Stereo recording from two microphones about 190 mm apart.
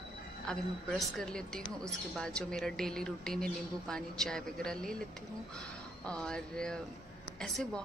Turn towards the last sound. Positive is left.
turn(degrees=5)  # may be behind; listen again after turning